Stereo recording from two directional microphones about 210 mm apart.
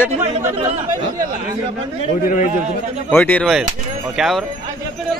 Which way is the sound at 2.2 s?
35° left (ahead or behind).